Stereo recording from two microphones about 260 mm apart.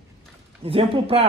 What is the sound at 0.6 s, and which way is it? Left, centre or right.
Speech, right.